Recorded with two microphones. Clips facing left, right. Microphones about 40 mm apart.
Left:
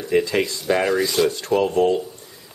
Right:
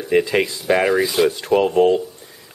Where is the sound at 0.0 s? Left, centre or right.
Right.